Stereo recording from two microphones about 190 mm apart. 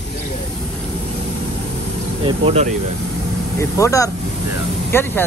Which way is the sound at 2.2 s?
30° right (ahead or behind).